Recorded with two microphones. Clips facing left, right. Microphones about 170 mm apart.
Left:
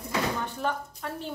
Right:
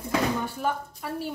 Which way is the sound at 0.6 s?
5° right (ahead or behind).